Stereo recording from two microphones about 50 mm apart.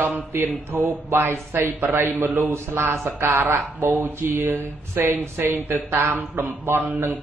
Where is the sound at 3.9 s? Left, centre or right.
Right.